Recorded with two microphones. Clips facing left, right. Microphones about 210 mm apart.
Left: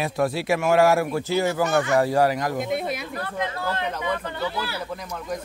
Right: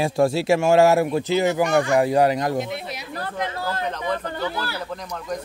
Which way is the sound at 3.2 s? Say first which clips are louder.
Right 3 dB; 35° right (ahead or behind).